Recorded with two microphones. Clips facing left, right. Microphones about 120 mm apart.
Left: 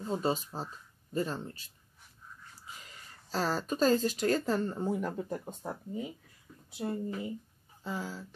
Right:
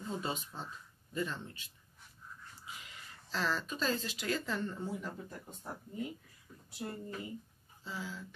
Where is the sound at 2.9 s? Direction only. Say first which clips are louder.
Left 6 dB; 40° left (ahead or behind).